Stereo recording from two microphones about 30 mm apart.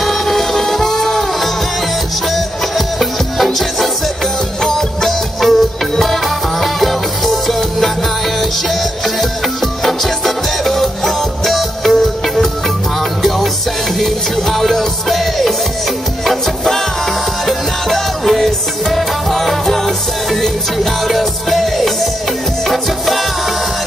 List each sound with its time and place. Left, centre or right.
0.0 s music: centre
4.6 s music: centre
13.9 s music: centre